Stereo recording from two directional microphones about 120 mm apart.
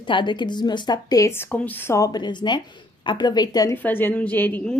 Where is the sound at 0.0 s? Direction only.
40° left (ahead or behind).